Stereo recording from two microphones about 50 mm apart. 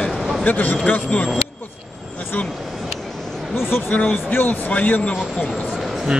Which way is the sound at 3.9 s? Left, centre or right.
Left.